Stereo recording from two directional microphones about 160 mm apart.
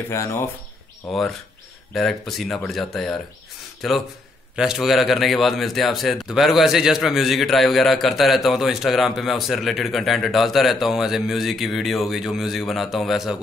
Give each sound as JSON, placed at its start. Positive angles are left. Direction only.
{"t": 0.1, "sound": "speech", "side_deg": 15}
{"t": 2.0, "sound": "a man's voice", "side_deg": 0}